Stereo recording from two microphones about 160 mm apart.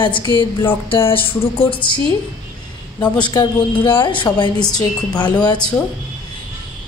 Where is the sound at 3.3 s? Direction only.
30° left (ahead or behind).